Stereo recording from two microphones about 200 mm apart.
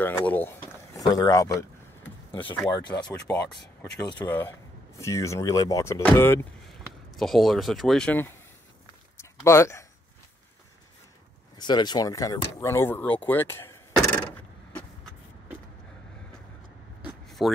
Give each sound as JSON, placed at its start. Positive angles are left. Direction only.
{"t": 0.0, "sound": "speech", "side_deg": 10}
{"t": 3.3, "sound": "a man's voice", "side_deg": 5}
{"t": 7.1, "sound": "a man's voice", "side_deg": 0}
{"t": 9.1, "sound": "a sound", "side_deg": 15}
{"t": 11.5, "sound": "speech", "side_deg": 20}
{"t": 17.0, "sound": "a sound", "side_deg": 0}